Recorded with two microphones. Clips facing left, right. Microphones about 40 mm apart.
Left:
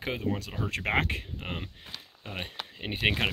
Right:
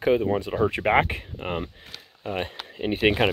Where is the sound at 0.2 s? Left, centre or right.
Right.